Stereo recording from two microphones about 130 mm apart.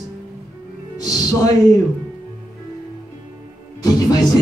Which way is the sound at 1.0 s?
30° left (ahead or behind).